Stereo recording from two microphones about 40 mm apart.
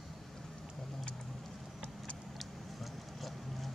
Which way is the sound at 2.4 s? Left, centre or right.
Centre.